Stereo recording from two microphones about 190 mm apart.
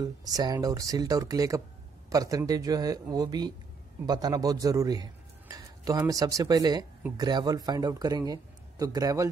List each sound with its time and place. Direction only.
0.0 s a man's voice: 20° right (ahead or behind)